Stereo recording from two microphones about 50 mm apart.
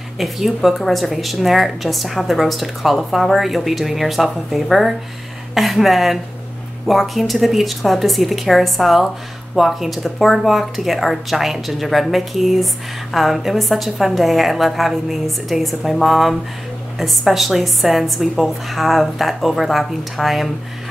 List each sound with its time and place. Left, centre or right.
0.2 s a woman's voice: centre